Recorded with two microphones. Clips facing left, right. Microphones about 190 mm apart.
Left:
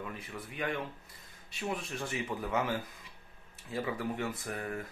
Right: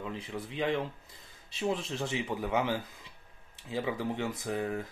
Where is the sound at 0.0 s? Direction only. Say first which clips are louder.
Right 4 dB; 20° right (ahead or behind).